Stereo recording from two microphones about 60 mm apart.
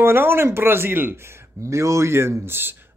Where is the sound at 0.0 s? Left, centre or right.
Right.